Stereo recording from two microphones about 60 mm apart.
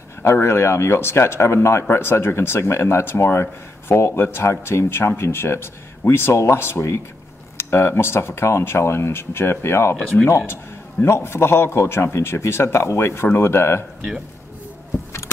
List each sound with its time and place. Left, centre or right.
0.2 s a man's voice: left